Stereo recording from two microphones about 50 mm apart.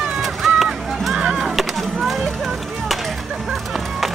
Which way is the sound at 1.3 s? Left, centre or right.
Centre.